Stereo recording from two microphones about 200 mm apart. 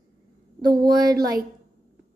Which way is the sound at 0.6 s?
20° right (ahead or behind).